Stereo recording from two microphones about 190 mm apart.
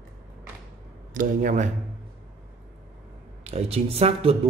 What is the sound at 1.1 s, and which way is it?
Speech, 45° right (ahead or behind).